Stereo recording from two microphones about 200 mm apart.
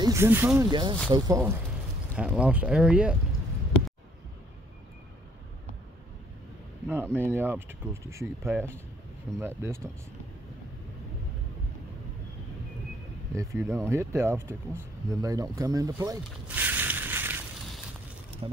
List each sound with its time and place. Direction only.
0.0 s speech: 15° right (ahead or behind)
6.9 s speech: 10° right (ahead or behind)
13.3 s speech: 15° right (ahead or behind)
16.4 s a sound: 10° right (ahead or behind)
18.4 s speech: 25° right (ahead or behind)